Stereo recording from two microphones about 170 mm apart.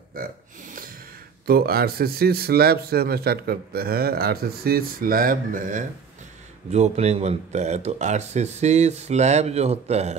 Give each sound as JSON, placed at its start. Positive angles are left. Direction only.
{"t": 0.2, "sound": "burping", "side_deg": -55}
{"t": 1.4, "sound": "speech", "side_deg": -65}